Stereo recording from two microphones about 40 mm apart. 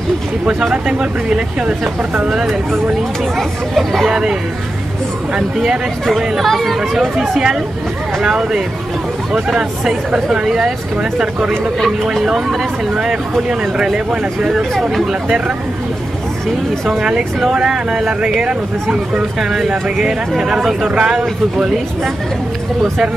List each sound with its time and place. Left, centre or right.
0.5 s speech: centre
3.3 s speech: centre
4.1 s speech: centre
6.1 s speech: centre
7.2 s speech: centre
9.8 s speech: centre
11.8 s speech: centre
12.9 s speech: centre
14.5 s speech: centre
17.0 s speech: centre
20.1 s speech: centre